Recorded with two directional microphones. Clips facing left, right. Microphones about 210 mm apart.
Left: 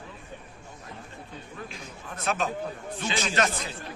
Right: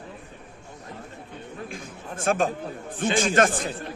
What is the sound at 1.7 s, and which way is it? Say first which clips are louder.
A man's voice: right 4 dB; 50° right (ahead or behind).